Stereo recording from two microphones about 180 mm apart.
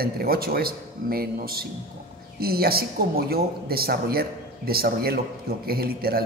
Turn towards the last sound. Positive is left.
turn(degrees=-55)  # may be behind; listen again after turning